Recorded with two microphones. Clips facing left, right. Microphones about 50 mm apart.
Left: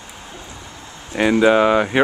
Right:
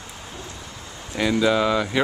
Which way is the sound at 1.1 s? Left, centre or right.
Left.